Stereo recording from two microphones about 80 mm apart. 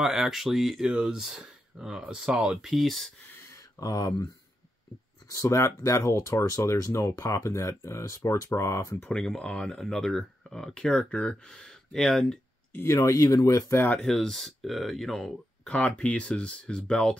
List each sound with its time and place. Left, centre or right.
0.0 s speech: centre
3.8 s speech: left
5.3 s speech: left
9.0 s speech: centre
12.8 s speech: left
14.0 s speech: centre